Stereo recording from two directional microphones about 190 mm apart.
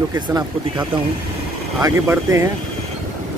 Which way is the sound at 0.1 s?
20° right (ahead or behind).